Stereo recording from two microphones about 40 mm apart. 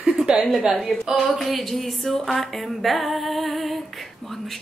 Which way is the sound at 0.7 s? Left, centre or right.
Centre.